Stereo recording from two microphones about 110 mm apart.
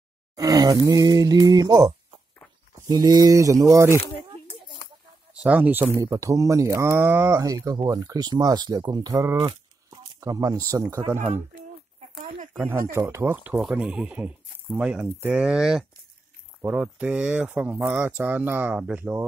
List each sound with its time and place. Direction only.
0.4 s speech: 35° right (ahead or behind)
5.3 s speech: 10° right (ahead or behind)
5.9 s speech: 30° right (ahead or behind)
11.1 s speech: 90° right
12.5 s speech: 20° right (ahead or behind)
13.6 s speech: 5° right (ahead or behind)